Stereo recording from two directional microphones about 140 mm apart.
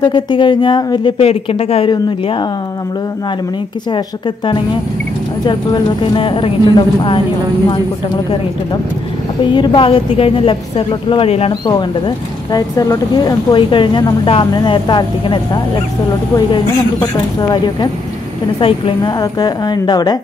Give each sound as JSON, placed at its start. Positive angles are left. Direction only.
{"t": 0.0, "sound": "speech", "side_deg": 35}
{"t": 5.4, "sound": "speech", "side_deg": 35}
{"t": 9.4, "sound": "speech", "side_deg": 35}
{"t": 12.5, "sound": "a woman's voice", "side_deg": 20}
{"t": 19.1, "sound": "a woman's voice", "side_deg": 30}